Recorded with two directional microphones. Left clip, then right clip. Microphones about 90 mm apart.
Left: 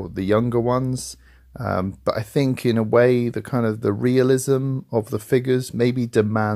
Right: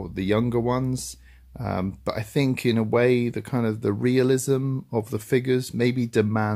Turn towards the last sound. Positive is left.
turn(degrees=30)  # may be behind; listen again after turning